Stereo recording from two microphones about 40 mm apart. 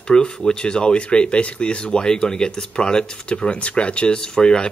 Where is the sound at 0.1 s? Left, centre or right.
Left.